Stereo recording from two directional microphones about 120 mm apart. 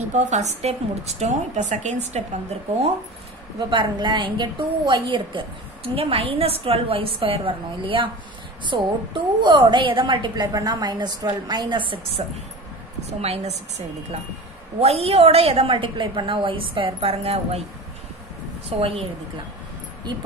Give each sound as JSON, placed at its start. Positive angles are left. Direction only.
{"t": 0.1, "sound": "a woman's voice", "side_deg": -80}
{"t": 3.5, "sound": "a woman's voice", "side_deg": -40}
{"t": 13.2, "sound": "a woman's voice", "side_deg": -65}
{"t": 18.7, "sound": "a woman's voice", "side_deg": -50}
{"t": 20.1, "sound": "a woman's voice", "side_deg": -40}